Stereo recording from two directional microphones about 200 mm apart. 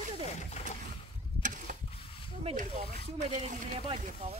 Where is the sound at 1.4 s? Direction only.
40° right (ahead or behind).